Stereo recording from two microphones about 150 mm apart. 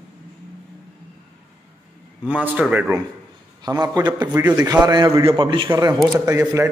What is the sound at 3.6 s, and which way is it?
A man's voice, 25° right (ahead or behind).